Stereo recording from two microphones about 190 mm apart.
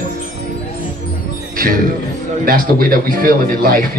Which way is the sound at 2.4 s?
50° right (ahead or behind).